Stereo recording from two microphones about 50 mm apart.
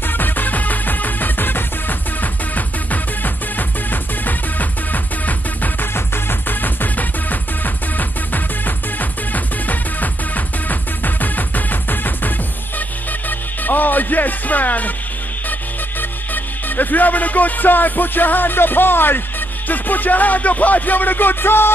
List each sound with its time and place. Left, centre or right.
0.2 s music: left
3.5 s music: left
13.7 s music: left
16.6 s music: left